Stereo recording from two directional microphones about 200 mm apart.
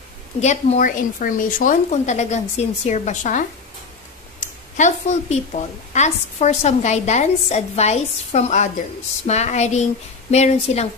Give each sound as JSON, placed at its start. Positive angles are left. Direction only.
{"t": 0.4, "sound": "a woman's voice", "side_deg": 35}